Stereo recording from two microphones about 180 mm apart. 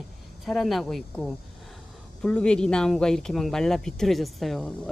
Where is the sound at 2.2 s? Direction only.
5° left (ahead or behind).